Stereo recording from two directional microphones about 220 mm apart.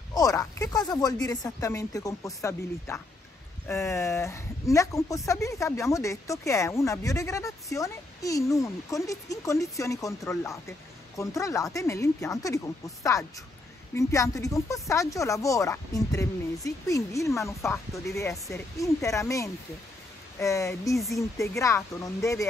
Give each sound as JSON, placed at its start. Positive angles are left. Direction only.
{"t": 0.1, "sound": "speech", "side_deg": 15}